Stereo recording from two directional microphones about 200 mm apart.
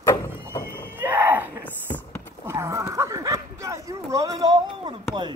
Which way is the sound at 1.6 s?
10° left (ahead or behind).